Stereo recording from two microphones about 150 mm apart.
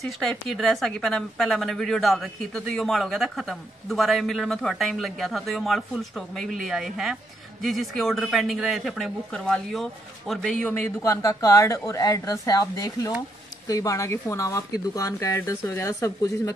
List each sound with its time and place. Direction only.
0.0 s a woman's voice: 5° left (ahead or behind)
11.0 s speech: 20° left (ahead or behind)